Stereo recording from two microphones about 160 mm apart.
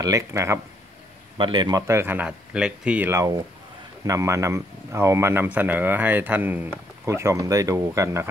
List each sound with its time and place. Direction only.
0.0 s speech: 20° right (ahead or behind)
1.4 s speech: 30° right (ahead or behind)